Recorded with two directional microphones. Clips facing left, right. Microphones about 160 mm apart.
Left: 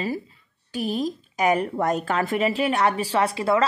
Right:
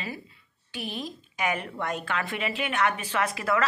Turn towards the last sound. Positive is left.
turn(degrees=30)  # may be behind; listen again after turning